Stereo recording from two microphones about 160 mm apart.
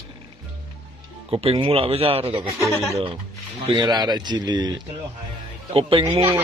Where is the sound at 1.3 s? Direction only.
40° right (ahead or behind).